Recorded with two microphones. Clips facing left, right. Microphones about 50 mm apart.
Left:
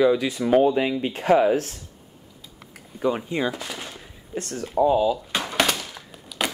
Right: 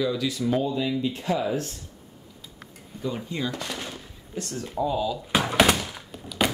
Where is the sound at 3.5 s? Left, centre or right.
Centre.